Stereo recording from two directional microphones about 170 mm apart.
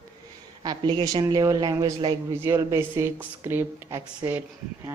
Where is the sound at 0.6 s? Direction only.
30° right (ahead or behind).